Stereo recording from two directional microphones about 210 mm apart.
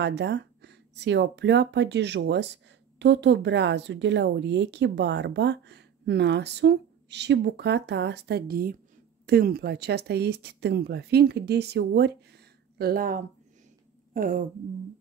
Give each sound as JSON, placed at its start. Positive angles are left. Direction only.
{"t": 0.0, "sound": "speech", "side_deg": -55}